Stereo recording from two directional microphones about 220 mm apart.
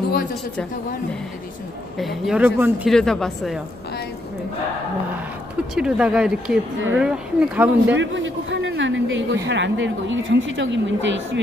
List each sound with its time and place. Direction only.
2.0 s speech: centre (ahead or behind)
5.8 s speech: 5° right (ahead or behind)
7.9 s a woman's voice: 55° right (ahead or behind)